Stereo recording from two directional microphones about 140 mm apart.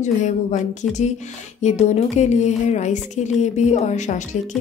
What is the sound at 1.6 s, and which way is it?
A woman's voice, 55° left (ahead or behind).